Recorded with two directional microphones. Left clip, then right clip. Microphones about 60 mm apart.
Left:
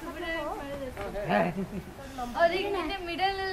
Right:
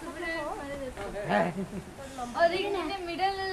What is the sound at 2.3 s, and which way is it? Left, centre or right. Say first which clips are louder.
A woman's voice: even; left.